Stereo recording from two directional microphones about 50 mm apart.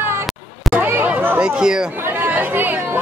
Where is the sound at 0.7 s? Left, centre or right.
Right.